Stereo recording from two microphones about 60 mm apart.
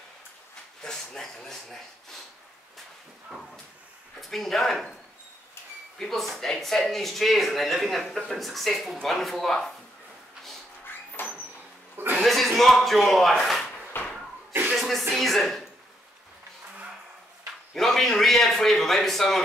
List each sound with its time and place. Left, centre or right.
0.8 s speech: centre
4.2 s speech: centre
5.9 s speech: centre
11.2 s a sound: left
12.2 s a sound: centre
12.5 s speech: centre
14.7 s music: centre
15.1 s speech: centre
17.7 s speech: centre